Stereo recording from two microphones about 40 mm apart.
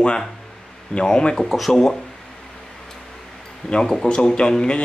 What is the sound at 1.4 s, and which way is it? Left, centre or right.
Speech, centre.